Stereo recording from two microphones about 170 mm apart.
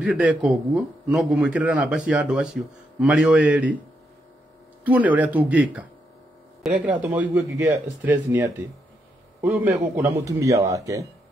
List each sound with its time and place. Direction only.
0.0 s a man's voice: 10° right (ahead or behind)
4.8 s a man's voice: 10° right (ahead or behind)